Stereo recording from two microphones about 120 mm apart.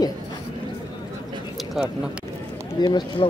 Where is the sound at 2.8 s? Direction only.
40° left (ahead or behind).